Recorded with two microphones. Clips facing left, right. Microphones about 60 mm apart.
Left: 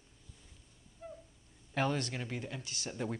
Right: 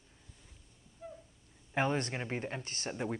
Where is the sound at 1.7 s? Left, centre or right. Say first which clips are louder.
Right 2 dB; right.